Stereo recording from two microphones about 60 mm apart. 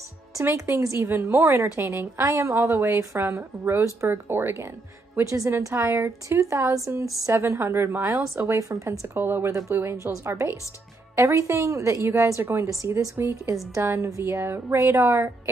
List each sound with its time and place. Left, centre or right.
0.4 s a woman's voice: right
4.1 s speech: right
5.2 s a woman's voice: right
7.4 s a woman's voice: right
9.1 s a woman's voice: right
9.5 s a woman's voice: right
9.8 s a woman's voice: right
11.1 s a woman's voice: right
14.8 s a woman's voice: right
15.0 s a woman's voice: right